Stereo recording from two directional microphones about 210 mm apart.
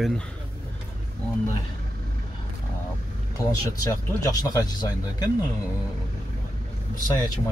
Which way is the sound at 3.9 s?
15° left (ahead or behind).